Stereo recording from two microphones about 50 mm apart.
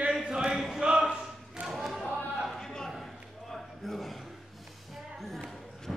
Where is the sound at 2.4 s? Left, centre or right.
Centre.